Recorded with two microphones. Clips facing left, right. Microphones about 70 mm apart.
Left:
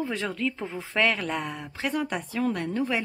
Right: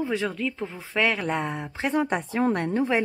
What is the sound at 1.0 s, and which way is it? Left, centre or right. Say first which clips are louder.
A woman's voice: right 2 dB; centre.